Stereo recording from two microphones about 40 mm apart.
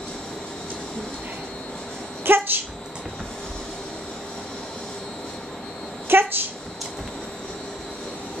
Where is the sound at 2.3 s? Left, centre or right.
Right.